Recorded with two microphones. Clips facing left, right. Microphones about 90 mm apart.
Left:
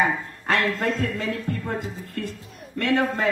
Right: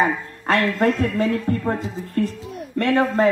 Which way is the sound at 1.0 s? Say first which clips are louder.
Right 6 dB; 35° right (ahead or behind).